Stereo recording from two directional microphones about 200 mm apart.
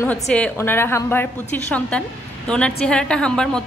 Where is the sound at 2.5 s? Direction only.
5° left (ahead or behind).